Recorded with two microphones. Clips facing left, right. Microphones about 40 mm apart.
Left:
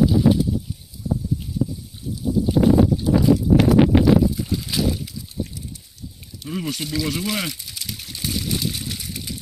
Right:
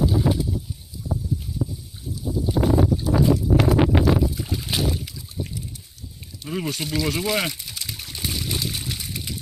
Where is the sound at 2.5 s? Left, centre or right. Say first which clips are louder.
Left 4 dB; centre.